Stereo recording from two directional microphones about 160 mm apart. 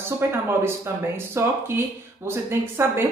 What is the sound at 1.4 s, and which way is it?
Speech, 15° right (ahead or behind).